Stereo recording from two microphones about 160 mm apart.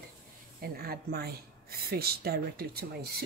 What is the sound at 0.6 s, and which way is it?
Speech, 75° right (ahead or behind).